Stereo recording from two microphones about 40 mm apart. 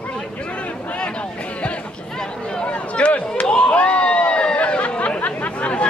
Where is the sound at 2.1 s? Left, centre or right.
Centre.